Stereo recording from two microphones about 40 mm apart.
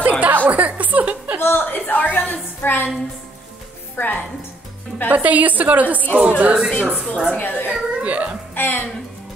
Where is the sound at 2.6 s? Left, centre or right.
Left.